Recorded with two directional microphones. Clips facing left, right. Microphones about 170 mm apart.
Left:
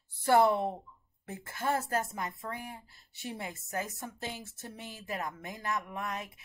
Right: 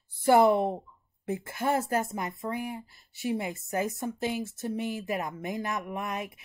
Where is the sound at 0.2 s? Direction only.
15° right (ahead or behind).